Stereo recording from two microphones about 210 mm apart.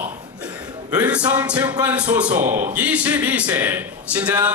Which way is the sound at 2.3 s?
35° right (ahead or behind).